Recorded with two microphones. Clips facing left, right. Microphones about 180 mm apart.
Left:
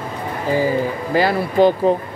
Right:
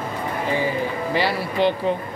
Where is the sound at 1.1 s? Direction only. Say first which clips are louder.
Left 7 dB; 45° left (ahead or behind).